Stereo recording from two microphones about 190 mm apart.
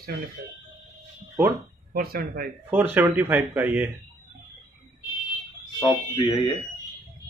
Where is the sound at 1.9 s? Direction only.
50° right (ahead or behind).